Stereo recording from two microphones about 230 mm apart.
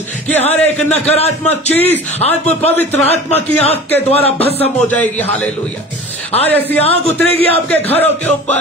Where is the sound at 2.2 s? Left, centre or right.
Left.